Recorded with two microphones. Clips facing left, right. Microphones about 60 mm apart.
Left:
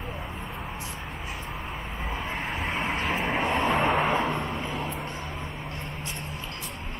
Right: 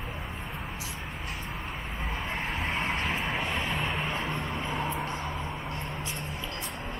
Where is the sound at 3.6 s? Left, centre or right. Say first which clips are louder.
Left 8 dB; left.